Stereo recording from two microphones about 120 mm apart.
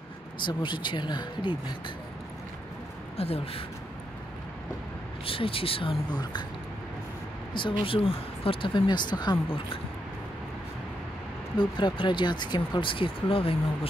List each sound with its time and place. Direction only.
0.5 s speech: 40° left (ahead or behind)
3.2 s speech: 55° left (ahead or behind)
5.2 s speech: 50° left (ahead or behind)
7.8 s speech: 50° left (ahead or behind)
11.5 s speech: 40° left (ahead or behind)